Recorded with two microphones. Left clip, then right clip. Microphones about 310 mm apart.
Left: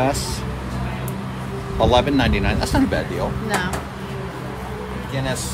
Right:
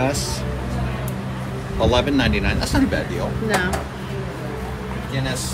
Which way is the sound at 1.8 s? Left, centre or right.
Left.